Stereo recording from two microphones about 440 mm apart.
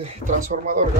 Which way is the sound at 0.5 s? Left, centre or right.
Centre.